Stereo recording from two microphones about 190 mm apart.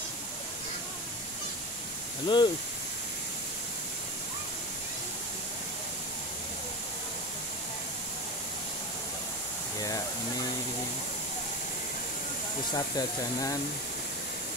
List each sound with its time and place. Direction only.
2.2 s speech: 25° left (ahead or behind)
9.8 s a sound: 20° left (ahead or behind)
12.7 s speech: 20° left (ahead or behind)